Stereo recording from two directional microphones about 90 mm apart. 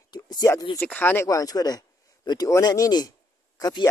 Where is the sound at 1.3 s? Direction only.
40° left (ahead or behind).